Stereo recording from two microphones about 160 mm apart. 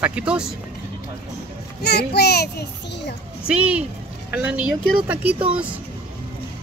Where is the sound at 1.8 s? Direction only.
90° left.